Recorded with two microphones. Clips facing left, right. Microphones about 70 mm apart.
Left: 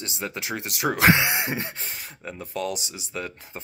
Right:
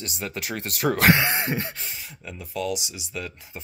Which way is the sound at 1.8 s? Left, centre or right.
Left.